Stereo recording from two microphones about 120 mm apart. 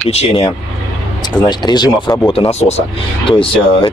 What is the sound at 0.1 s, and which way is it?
Speech, 60° left (ahead or behind).